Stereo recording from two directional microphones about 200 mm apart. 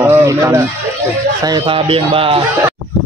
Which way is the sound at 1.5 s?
25° right (ahead or behind).